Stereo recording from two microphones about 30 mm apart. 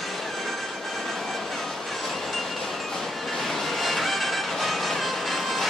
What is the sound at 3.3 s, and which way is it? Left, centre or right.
Music, centre.